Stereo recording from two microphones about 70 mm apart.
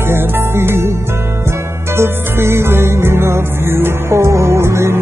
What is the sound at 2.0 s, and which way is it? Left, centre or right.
Music, right.